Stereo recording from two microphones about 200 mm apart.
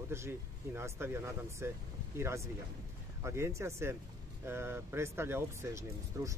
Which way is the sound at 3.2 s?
15° right (ahead or behind).